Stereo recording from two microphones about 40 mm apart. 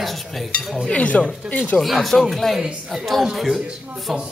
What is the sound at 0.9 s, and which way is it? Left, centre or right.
Speech, left.